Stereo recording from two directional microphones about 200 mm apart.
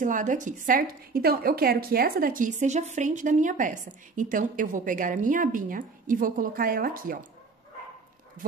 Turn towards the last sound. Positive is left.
turn(degrees=-45)  # may be behind; listen again after turning